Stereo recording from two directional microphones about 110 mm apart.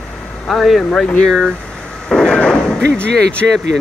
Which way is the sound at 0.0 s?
10° left (ahead or behind).